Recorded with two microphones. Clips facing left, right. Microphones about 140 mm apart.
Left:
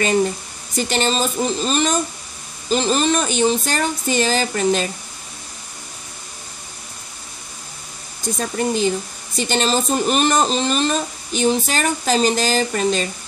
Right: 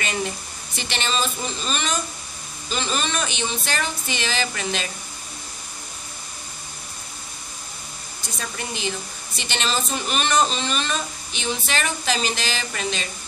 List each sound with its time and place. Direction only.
0.7 s a woman's voice: 40° left (ahead or behind)
8.4 s a woman's voice: 45° left (ahead or behind)